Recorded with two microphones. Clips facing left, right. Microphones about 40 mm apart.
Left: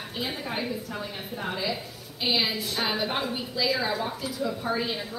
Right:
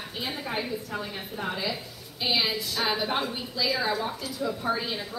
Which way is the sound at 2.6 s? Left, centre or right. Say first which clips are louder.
Even; centre.